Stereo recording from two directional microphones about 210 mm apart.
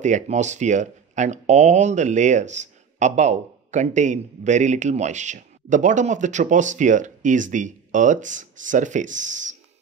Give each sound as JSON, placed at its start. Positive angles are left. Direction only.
{"t": 0.0, "sound": "speech", "side_deg": -35}